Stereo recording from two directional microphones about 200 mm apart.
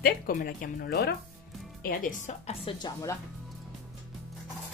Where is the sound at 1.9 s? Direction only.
40° left (ahead or behind).